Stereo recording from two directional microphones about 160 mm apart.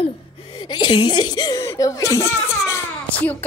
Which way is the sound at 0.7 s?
25° left (ahead or behind).